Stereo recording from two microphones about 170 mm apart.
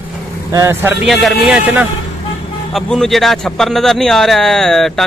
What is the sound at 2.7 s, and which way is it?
Speech, centre (ahead or behind).